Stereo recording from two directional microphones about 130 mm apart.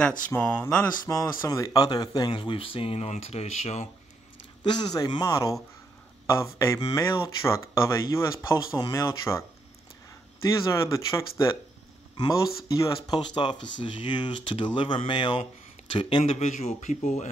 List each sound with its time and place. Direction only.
0.3 s speech: 15° left (ahead or behind)
1.0 s speech: 25° left (ahead or behind); by 3.8 s 60° left (ahead or behind)
4.6 s speech: 30° left (ahead or behind)
10.7 s speech: 25° left (ahead or behind); by 17.3 s 65° left (ahead or behind)